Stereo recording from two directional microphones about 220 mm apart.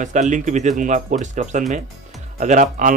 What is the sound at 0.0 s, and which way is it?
Speech, 35° right (ahead or behind).